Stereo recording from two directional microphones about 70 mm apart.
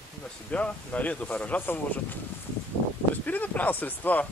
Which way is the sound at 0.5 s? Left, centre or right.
Centre.